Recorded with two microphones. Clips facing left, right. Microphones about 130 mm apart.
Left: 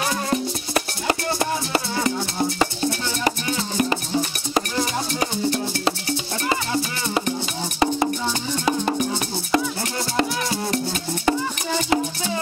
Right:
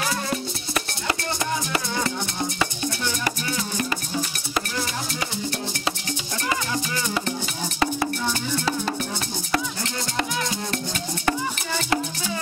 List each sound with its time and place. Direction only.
0.3 s music: 30° left (ahead or behind)
10.1 s music: 30° left (ahead or behind)